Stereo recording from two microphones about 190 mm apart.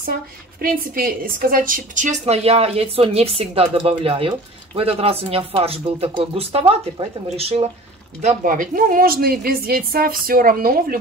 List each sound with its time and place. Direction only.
0.6 s a woman's voice: 50° right (ahead or behind)